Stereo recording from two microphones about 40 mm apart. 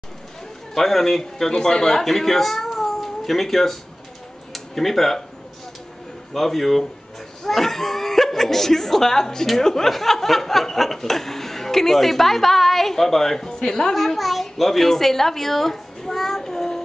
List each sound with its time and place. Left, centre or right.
0.7 s speech: centre
4.5 s tick-tock: centre
6.3 s speech: centre
13.9 s a child's voice: centre